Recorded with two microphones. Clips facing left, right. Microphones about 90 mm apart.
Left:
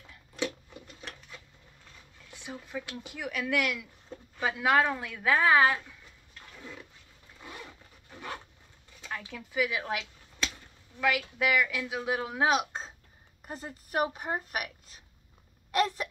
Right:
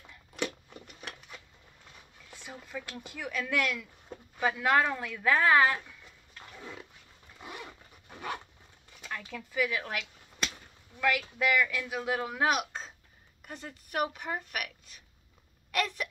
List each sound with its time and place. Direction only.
2.3 s a woman's voice: 15° left (ahead or behind)
6.6 s dog: 20° right (ahead or behind)
7.4 s zipper: 20° right (ahead or behind)
9.1 s a woman's voice: 15° left (ahead or behind); by 15.0 s 35° left (ahead or behind)
15.7 s hiccup: 35° left (ahead or behind)